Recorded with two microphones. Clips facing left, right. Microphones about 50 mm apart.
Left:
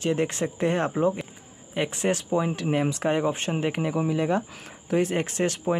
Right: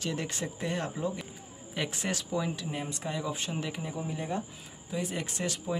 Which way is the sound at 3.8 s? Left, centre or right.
Left.